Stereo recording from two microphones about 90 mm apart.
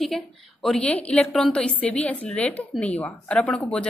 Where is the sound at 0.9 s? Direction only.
15° left (ahead or behind).